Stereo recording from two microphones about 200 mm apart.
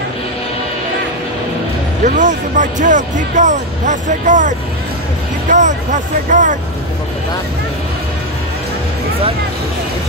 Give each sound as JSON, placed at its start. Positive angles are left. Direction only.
{"t": 2.0, "sound": "speech", "side_deg": -40}